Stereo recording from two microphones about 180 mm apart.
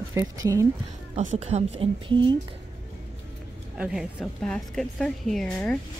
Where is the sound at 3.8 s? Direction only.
5° right (ahead or behind).